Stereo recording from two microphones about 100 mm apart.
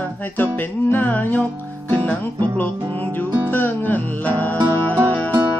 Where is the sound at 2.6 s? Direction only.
20° left (ahead or behind).